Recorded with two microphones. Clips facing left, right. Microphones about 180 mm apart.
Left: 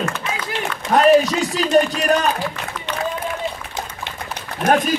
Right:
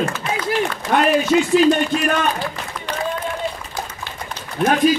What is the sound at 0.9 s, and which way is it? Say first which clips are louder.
A man's voice: left 2 dB; 35° left (ahead or behind).